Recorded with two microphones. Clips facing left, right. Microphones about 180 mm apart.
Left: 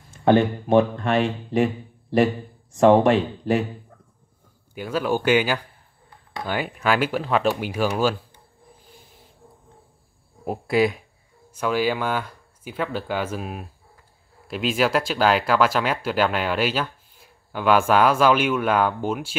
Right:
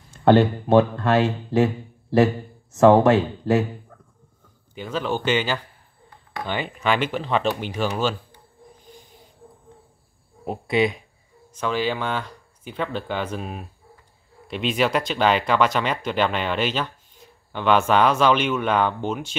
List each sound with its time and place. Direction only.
0.3 s speech: 15° left (ahead or behind)
4.7 s speech: 10° left (ahead or behind)
8.9 s a sound: 5° left (ahead or behind)
10.4 s speech: 5° left (ahead or behind)